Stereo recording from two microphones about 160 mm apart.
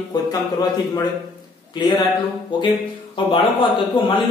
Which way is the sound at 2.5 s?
25° left (ahead or behind).